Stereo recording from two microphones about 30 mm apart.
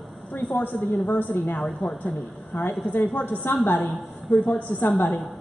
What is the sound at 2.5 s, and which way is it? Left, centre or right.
Speech, left.